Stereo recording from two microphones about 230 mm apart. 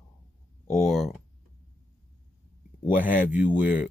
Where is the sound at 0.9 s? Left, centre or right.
Centre.